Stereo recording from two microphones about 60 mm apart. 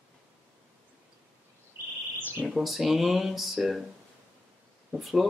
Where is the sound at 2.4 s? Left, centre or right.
Centre.